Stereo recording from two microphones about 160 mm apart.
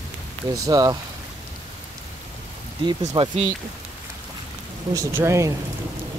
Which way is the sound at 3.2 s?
30° right (ahead or behind).